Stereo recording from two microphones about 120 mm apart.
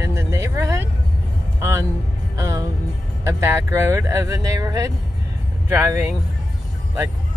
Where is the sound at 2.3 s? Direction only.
25° right (ahead or behind).